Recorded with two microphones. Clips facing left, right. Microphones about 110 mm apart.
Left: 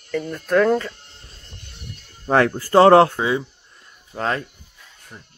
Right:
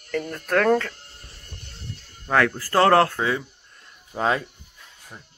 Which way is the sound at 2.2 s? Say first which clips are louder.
Left 4 dB; 30° left (ahead or behind).